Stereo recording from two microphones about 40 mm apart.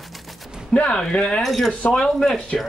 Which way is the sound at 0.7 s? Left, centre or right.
Left.